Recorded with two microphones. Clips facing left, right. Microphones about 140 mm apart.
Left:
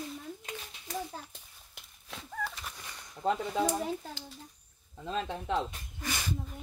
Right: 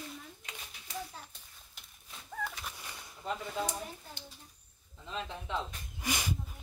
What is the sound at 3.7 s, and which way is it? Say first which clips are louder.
Speech: left 9 dB; 90° left.